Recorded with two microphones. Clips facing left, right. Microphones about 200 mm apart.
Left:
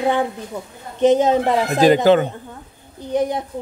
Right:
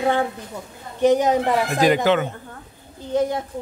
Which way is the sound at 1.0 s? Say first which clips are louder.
Left 2 dB; 20° left (ahead or behind).